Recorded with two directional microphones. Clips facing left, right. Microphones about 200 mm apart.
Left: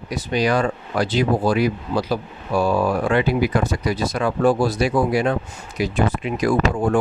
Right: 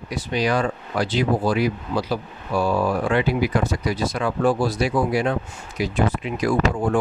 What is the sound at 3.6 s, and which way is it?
Speech, 45° left (ahead or behind).